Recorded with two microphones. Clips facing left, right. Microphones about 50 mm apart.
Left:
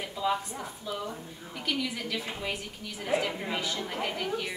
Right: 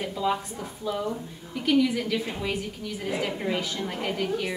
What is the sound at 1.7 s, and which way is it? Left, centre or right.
A woman's voice, centre.